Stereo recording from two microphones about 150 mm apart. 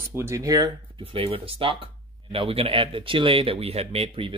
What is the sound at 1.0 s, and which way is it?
Speech, 40° right (ahead or behind).